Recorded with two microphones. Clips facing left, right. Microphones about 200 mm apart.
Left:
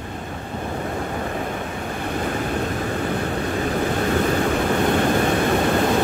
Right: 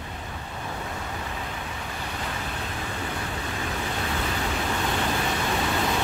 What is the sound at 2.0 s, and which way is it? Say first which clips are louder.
Waves: left 11 dB; 50° left (ahead or behind).